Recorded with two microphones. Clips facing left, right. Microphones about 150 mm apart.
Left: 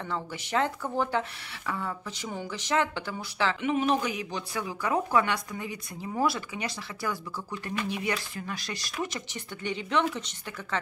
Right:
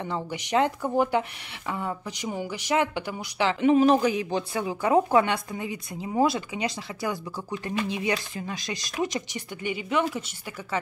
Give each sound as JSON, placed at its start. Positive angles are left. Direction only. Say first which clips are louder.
{"t": 0.0, "sound": "speech", "louder": "right 3 dB", "side_deg": -20}
{"t": 3.6, "sound": "a woman's voice", "louder": "right 9 dB", "side_deg": -35}